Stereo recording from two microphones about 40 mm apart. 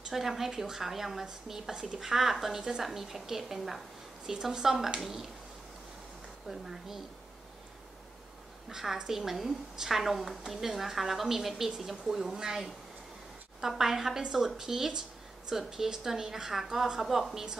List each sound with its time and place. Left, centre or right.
0.1 s a woman's voice: centre
1.2 s a woman's voice: centre
6.5 s a woman's voice: centre
8.6 s a woman's voice: centre
13.6 s a woman's voice: centre